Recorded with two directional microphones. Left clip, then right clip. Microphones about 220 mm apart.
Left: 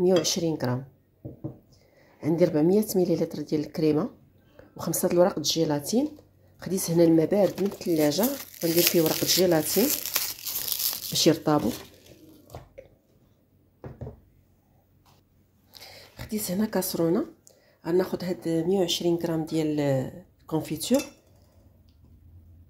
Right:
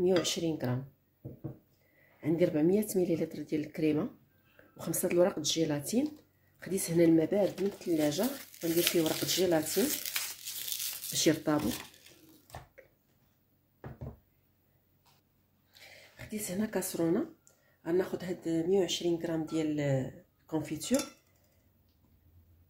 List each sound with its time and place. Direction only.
0.0 s speech: 20° left (ahead or behind)
2.1 s speech: 20° left (ahead or behind)
11.1 s speech: 20° left (ahead or behind)
15.7 s a sound: 30° left (ahead or behind)
17.8 s speech: 25° left (ahead or behind)